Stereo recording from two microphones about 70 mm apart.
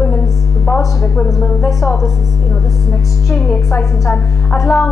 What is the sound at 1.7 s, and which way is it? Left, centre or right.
Speech, centre.